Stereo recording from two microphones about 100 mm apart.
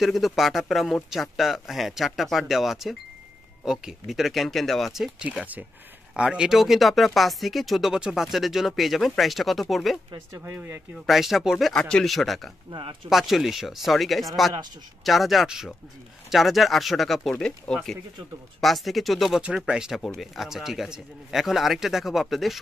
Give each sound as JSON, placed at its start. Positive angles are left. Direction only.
{"t": 0.0, "sound": "speech", "side_deg": 0}
{"t": 10.4, "sound": "speech", "side_deg": -20}
{"t": 11.1, "sound": "speech", "side_deg": 0}
{"t": 12.7, "sound": "speech", "side_deg": -55}
{"t": 13.1, "sound": "speech", "side_deg": 0}